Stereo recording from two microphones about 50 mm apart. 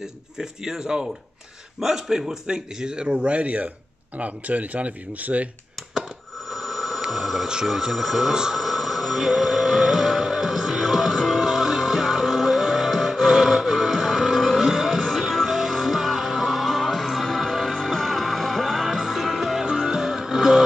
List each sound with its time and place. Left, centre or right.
0.0 s a man's voice: centre; by 5.5 s right
6.5 s telephone bell ringing: centre
19.8 s music: centre